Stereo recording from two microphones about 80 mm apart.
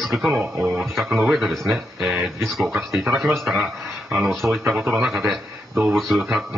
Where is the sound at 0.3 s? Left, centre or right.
Right.